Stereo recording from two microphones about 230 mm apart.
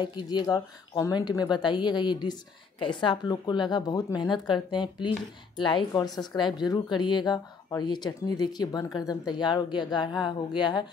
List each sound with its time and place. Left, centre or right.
0.0 s speech: centre